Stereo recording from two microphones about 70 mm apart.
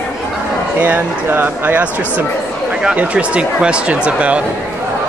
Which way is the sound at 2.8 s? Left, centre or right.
Centre.